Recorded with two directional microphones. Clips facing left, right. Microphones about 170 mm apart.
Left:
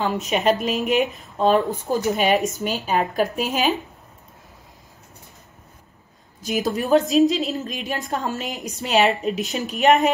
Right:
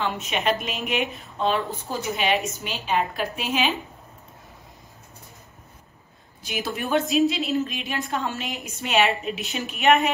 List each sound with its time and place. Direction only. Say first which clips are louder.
0.0 s a woman's voice: left 5 dB; 40° left (ahead or behind)
6.4 s a woman's voice: left 6 dB; 40° left (ahead or behind)